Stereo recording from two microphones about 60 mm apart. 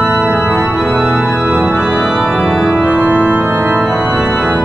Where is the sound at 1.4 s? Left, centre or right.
Centre.